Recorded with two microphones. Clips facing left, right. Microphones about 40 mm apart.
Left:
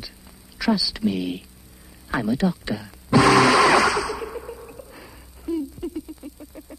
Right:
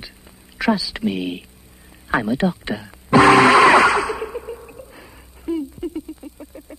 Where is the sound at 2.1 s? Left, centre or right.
Right.